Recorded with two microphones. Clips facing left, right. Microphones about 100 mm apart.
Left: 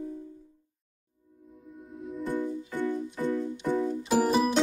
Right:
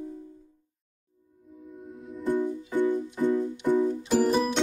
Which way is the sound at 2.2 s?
15° right (ahead or behind).